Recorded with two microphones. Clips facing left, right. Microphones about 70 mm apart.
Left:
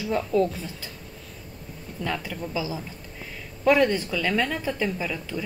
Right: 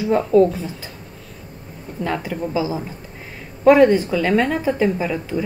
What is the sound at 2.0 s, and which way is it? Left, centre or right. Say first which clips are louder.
Speech: right 7 dB; right.